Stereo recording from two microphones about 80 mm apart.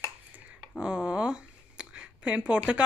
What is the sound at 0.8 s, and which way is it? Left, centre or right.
Speech, centre.